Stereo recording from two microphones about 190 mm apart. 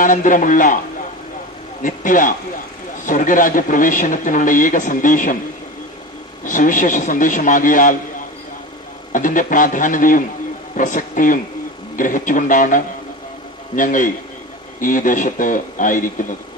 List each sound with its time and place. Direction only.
0.0 s a man's voice: 45° left (ahead or behind)
1.8 s a man's voice: 45° left (ahead or behind)
6.4 s a man's voice: 45° left (ahead or behind)
9.1 s a man's voice: 45° left (ahead or behind)